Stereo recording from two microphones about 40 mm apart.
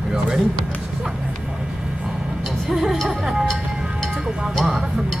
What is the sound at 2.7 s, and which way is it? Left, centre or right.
Music, centre.